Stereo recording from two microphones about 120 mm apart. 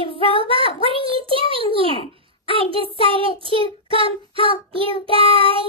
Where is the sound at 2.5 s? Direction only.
50° right (ahead or behind).